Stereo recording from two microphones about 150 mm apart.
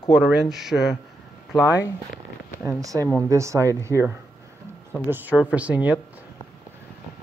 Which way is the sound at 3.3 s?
20° right (ahead or behind).